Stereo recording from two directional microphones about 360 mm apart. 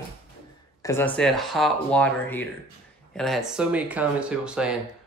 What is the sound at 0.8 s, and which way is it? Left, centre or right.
Speech, centre.